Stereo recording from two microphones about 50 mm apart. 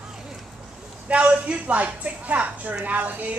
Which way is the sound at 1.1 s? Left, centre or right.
Right.